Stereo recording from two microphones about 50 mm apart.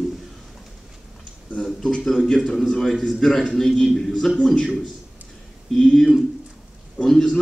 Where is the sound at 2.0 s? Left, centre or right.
Centre.